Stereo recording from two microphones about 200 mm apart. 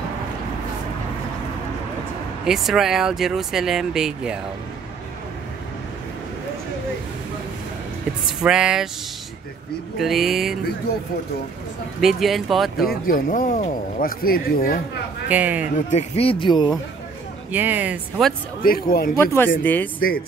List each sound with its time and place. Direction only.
2.4 s speech: centre (ahead or behind)
8.3 s speech: 5° right (ahead or behind)
9.9 s speech: centre (ahead or behind)
12.0 s speech: centre (ahead or behind)
12.9 s speech: 45° left (ahead or behind)
15.2 s speech: 10° right (ahead or behind)
15.9 s speech: 30° left (ahead or behind)
17.5 s speech: 10° right (ahead or behind)
18.6 s speech: 45° left (ahead or behind)
19.1 s speech: 10° left (ahead or behind)